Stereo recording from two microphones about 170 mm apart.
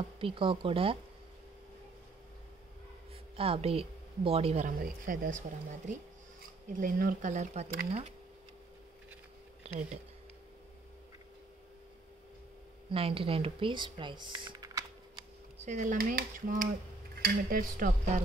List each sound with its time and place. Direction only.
0.2 s speech: 30° right (ahead or behind)
3.3 s speech: 35° right (ahead or behind)
4.6 s speech: 55° right (ahead or behind)
9.6 s speech: 40° right (ahead or behind)
12.9 s speech: 35° right (ahead or behind)
15.6 s speech: 45° right (ahead or behind)
17.1 s dishes: 55° right (ahead or behind)